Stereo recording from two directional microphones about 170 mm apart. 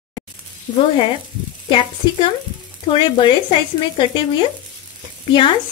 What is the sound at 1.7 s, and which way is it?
Speech, 30° left (ahead or behind).